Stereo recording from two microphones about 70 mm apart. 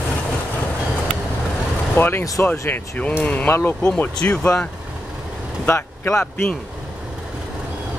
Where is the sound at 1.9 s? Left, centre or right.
Left.